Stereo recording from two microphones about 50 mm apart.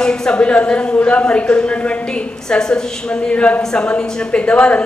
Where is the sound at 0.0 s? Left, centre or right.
Centre.